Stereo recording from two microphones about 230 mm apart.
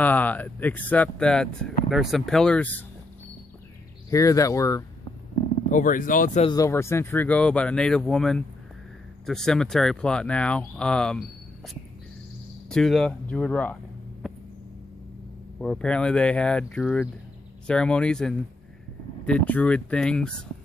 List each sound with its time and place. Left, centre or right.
0.0 s speech: centre
4.1 s speech: centre
5.7 s speech: left
6.4 s speech: centre
14.2 s hum: centre
15.6 s speech: centre